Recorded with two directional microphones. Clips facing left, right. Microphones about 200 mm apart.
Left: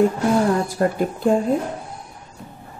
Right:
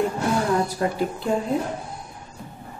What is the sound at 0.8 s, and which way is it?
Speech, 50° left (ahead or behind).